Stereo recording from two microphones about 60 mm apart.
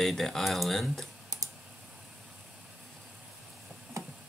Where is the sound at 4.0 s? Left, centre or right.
Right.